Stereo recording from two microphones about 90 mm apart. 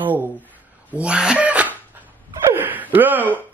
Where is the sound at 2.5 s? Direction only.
20° right (ahead or behind).